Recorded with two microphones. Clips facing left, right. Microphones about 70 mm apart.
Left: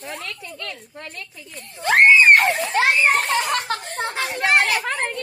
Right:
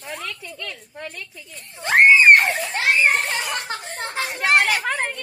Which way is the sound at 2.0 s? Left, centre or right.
Centre.